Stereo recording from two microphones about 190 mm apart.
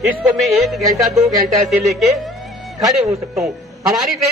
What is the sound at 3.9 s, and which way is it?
Music, centre (ahead or behind).